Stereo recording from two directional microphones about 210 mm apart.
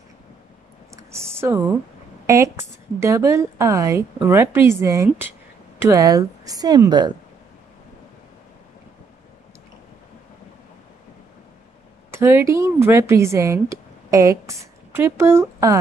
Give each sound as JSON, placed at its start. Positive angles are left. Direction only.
{"t": 0.9, "sound": "a woman's voice", "side_deg": -10}
{"t": 12.1, "sound": "speech", "side_deg": -10}